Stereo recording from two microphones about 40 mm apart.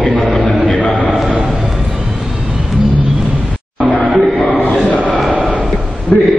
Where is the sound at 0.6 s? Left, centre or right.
Left.